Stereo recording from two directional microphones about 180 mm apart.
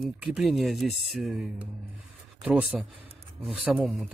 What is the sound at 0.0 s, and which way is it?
A man's voice, centre (ahead or behind).